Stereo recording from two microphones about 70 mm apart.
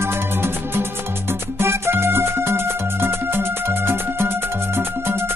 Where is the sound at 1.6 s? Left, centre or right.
Right.